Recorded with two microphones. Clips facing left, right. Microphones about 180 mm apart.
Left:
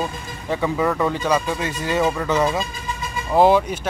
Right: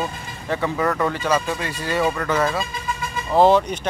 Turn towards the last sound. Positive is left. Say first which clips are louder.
# even
turn(degrees=10)  # may be behind; listen again after turning